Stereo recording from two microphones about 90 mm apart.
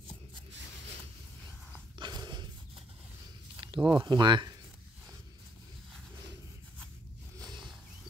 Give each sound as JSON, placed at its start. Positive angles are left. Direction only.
{"t": 2.0, "sound": "dog", "side_deg": -55}
{"t": 3.6, "sound": "speech", "side_deg": -60}
{"t": 7.3, "sound": "wild animals", "side_deg": -45}